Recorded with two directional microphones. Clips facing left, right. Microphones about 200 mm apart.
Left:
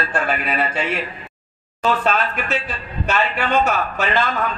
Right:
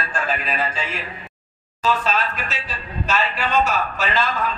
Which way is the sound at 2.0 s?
55° left (ahead or behind).